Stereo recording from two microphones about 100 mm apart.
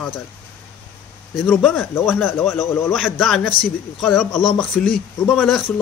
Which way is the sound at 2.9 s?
Centre (ahead or behind).